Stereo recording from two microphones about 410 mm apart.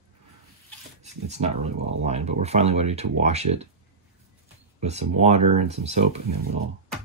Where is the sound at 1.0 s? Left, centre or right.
Centre.